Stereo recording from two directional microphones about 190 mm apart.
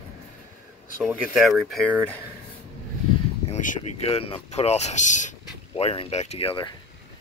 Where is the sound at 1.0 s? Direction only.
Centre (ahead or behind).